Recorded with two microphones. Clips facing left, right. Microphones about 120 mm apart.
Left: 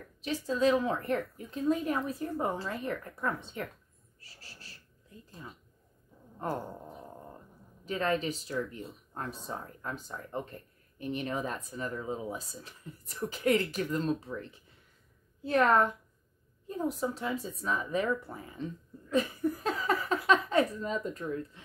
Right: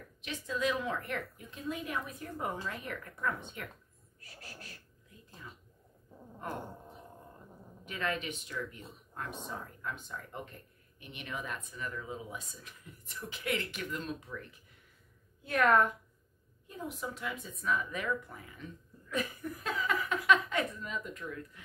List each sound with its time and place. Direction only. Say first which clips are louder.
0.2 s speech: left 7 dB; 35° left (ahead or behind)
6.4 s speech: left 6 dB; 35° left (ahead or behind)
7.8 s a woman's voice: left 6 dB; 35° left (ahead or behind)